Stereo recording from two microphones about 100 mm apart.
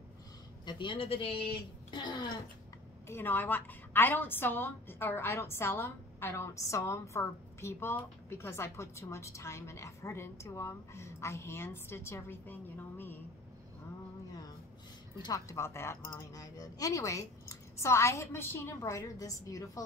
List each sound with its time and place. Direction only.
0.7 s a woman's voice: 55° left (ahead or behind)
1.9 s speech: 50° left (ahead or behind)
3.1 s a woman's voice: 20° left (ahead or behind)
15.2 s a woman's voice: 35° left (ahead or behind)